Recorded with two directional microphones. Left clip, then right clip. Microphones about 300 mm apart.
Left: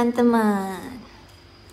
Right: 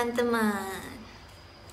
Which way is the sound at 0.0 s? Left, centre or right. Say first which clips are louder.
Left 7 dB; centre.